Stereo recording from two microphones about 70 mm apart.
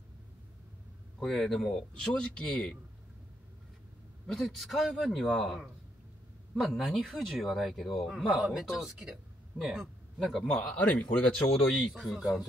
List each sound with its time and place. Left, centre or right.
1.2 s a man's voice: centre
4.3 s speech: centre
8.4 s speech: centre
8.6 s speech: centre
9.7 s a man's voice: centre
11.9 s speech: centre